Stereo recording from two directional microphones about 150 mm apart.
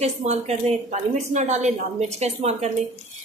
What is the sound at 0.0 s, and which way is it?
A woman's voice, 45° right (ahead or behind).